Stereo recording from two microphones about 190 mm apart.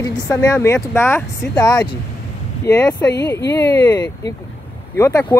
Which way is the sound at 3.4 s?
65° left (ahead or behind).